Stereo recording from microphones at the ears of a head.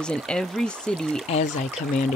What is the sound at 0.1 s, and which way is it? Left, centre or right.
Speech, centre.